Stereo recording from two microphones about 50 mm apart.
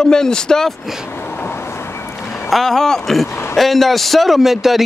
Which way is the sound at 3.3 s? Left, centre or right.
Left.